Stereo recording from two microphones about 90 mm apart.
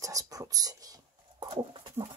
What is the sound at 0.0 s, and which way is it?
Whispering, 40° right (ahead or behind).